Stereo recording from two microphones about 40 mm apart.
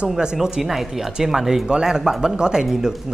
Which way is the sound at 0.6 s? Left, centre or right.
Centre.